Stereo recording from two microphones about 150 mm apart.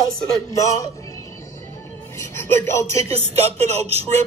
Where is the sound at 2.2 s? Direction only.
15° left (ahead or behind).